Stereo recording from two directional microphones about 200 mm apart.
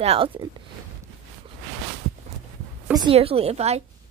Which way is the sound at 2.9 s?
25° right (ahead or behind).